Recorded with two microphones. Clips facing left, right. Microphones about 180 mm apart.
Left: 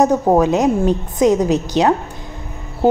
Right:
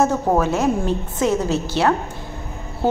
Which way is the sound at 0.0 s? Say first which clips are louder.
Left 5 dB; 15° left (ahead or behind).